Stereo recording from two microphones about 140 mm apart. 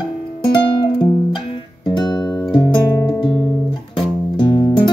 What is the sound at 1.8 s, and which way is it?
Music, 30° left (ahead or behind).